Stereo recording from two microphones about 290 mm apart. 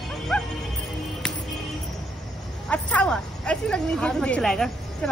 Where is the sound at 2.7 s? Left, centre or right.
Centre.